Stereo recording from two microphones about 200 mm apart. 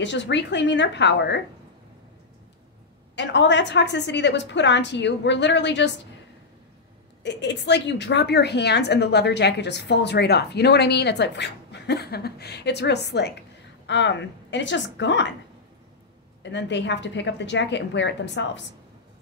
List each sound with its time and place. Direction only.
0.0 s a woman's voice: 60° left (ahead or behind)
3.2 s a woman's voice: 60° left (ahead or behind)
7.2 s a woman's voice: 60° left (ahead or behind)
16.4 s a woman's voice: 60° left (ahead or behind)